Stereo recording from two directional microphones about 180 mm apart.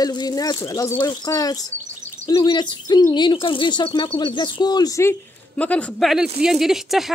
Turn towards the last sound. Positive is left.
turn(degrees=0)  # may be behind; listen again after turning